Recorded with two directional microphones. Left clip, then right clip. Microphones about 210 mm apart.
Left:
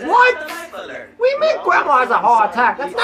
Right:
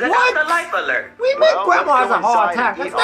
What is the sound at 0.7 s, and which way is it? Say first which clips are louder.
Speech: right 10 dB; 55° right (ahead or behind).